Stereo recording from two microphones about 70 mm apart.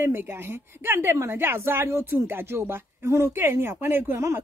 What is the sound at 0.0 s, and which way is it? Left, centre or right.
A woman's voice, right.